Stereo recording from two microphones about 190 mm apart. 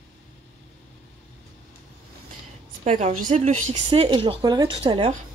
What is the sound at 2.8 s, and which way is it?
A woman's voice, 35° right (ahead or behind).